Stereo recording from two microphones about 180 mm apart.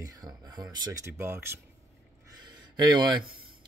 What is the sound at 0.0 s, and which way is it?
A man's voice, 20° right (ahead or behind).